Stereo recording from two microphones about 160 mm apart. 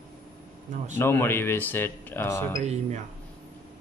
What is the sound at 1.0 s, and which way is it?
Speech, 15° left (ahead or behind).